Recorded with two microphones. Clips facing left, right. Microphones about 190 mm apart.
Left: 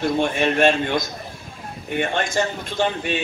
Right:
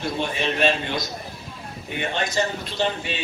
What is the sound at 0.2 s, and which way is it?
A man's voice, 50° left (ahead or behind).